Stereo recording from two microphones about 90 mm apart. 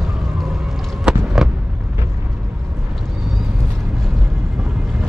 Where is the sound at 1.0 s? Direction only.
5° right (ahead or behind).